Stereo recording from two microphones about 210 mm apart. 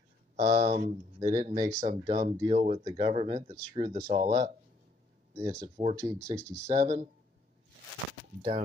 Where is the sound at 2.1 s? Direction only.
30° right (ahead or behind).